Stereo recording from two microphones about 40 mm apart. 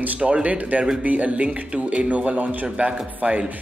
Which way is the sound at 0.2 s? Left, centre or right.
Right.